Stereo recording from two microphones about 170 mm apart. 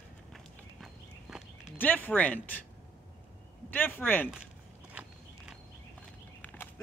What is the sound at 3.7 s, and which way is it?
Speech, 10° left (ahead or behind).